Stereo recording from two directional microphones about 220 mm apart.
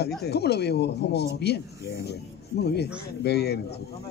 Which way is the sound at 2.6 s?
50° left (ahead or behind).